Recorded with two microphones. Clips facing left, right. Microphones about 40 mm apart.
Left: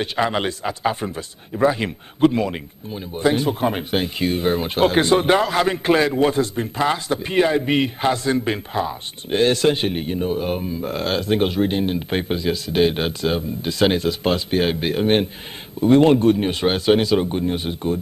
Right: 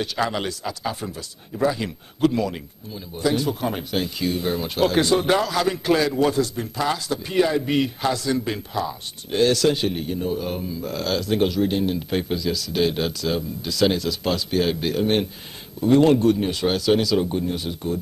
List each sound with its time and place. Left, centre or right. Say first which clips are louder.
0.0 s a man's voice: left 3 dB; left